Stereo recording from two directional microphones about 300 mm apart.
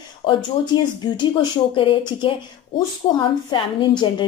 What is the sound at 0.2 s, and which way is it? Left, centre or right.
A woman's voice, centre.